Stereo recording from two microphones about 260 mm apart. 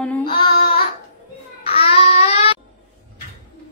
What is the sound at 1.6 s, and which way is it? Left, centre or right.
Babbling, left.